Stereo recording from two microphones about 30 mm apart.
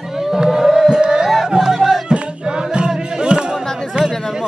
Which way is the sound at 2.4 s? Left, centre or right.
Right.